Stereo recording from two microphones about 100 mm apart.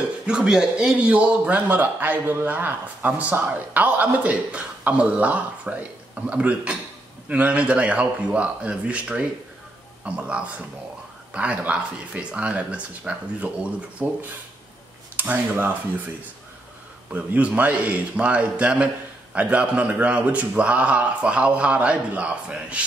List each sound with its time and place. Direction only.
0.3 s a man's voice: 10° right (ahead or behind)
15.1 s a man's voice: 15° right (ahead or behind)
17.1 s a man's voice: 15° right (ahead or behind)